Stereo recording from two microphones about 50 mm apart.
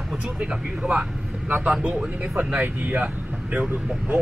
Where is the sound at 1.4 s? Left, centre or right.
Right.